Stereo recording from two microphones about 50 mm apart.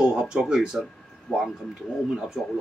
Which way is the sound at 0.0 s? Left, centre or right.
Centre.